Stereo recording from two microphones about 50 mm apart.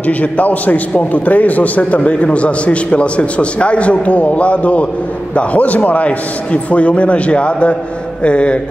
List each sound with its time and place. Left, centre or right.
0.0 s a man's voice: left